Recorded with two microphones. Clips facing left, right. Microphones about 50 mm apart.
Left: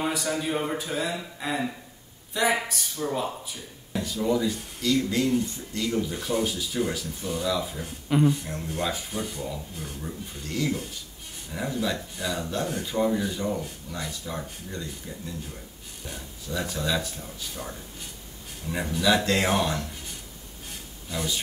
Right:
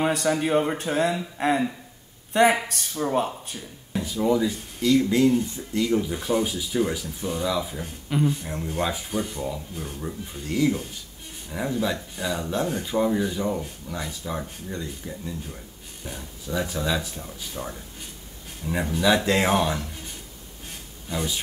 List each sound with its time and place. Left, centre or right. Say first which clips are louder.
0.3 s speech: right 5 dB; right
1.4 s speech: right 7 dB; right
2.9 s speech: right 5 dB; right
3.9 s speech: right 3 dB; centre
16.5 s speech: right 2 dB; centre
21.1 s speech: right 2 dB; centre